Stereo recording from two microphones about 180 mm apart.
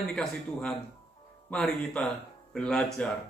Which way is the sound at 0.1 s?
Centre (ahead or behind).